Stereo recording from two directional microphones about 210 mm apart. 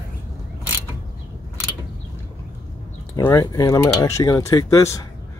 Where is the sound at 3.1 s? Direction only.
15° left (ahead or behind).